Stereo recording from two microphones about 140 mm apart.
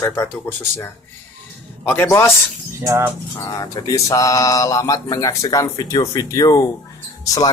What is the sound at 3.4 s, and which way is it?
Speech, 25° left (ahead or behind).